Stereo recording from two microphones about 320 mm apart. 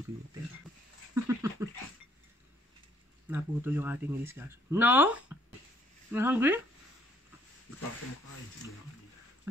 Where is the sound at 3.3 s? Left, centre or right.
Centre.